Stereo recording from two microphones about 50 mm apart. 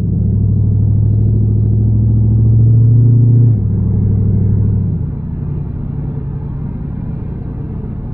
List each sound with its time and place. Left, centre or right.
2.8 s vehicle: centre
4.0 s vehicle: right